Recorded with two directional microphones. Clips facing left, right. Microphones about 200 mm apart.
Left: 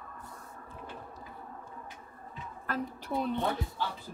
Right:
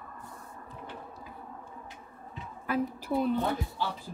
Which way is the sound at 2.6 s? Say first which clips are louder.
Right 5 dB; 10° right (ahead or behind).